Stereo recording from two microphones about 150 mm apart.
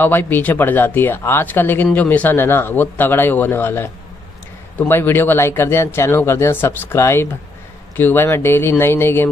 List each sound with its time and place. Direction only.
0.0 s speech: 15° left (ahead or behind)